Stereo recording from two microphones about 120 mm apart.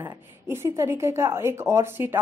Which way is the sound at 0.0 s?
20° right (ahead or behind).